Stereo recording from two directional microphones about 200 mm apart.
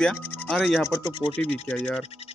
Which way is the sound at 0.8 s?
20° left (ahead or behind).